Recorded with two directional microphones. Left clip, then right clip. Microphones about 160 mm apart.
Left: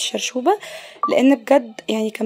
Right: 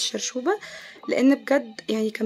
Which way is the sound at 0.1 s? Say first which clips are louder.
Left 7 dB; 20° left (ahead or behind).